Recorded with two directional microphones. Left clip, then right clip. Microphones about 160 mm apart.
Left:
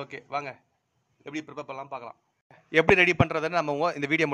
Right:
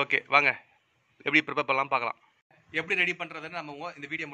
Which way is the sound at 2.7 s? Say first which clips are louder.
Left 7 dB; 90° left.